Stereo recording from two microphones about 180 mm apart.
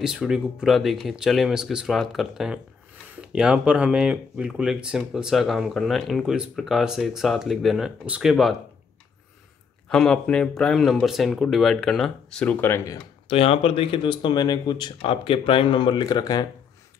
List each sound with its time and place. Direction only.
0.0 s speech: 5° right (ahead or behind)
9.8 s speech: 5° left (ahead or behind)
13.3 s speech: 30° left (ahead or behind)